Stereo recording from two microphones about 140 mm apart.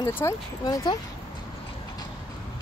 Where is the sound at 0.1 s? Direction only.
20° left (ahead or behind).